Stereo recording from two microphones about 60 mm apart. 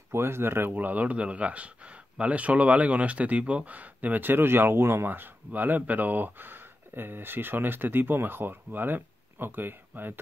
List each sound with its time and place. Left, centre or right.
0.1 s speech: right